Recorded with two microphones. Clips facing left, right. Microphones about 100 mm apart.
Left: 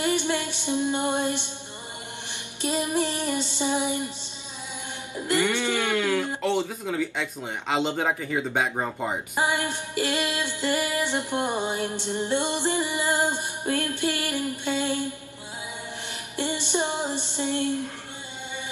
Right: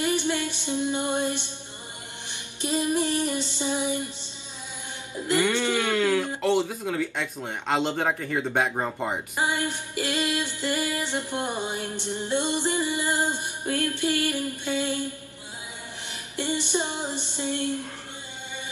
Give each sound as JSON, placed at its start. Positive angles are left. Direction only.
{"t": 0.0, "sound": "music", "side_deg": 20}
{"t": 2.7, "sound": "music", "side_deg": 20}
{"t": 5.8, "sound": "music", "side_deg": 15}
{"t": 6.4, "sound": "speech", "side_deg": 0}
{"t": 9.3, "sound": "music", "side_deg": 20}
{"t": 16.3, "sound": "music", "side_deg": 20}